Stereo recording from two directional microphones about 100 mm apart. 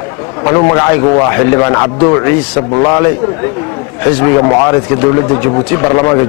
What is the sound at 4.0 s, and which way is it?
Speech, 20° left (ahead or behind).